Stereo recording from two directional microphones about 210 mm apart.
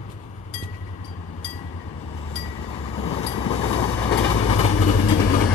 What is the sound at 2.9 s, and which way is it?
Vehicle, 30° left (ahead or behind).